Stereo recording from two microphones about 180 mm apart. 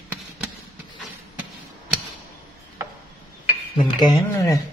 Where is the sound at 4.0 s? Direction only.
25° left (ahead or behind).